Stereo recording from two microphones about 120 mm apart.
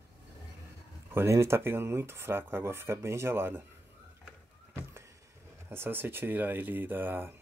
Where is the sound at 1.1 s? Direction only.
20° right (ahead or behind).